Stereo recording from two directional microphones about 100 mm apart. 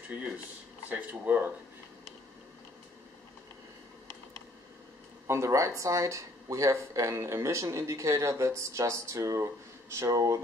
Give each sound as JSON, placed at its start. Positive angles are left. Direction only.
{"t": 0.8, "sound": "speech", "side_deg": -15}
{"t": 5.2, "sound": "speech", "side_deg": -30}